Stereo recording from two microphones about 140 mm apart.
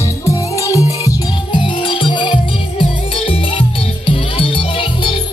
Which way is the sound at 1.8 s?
35° left (ahead or behind).